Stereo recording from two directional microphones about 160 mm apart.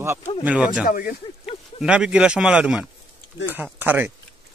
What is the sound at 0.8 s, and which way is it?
Speech, 65° left (ahead or behind).